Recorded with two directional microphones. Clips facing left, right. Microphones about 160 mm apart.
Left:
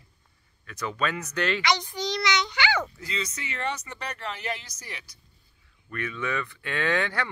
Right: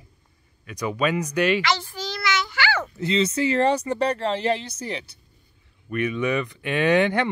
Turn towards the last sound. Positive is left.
turn(degrees=-20)  # may be behind; listen again after turning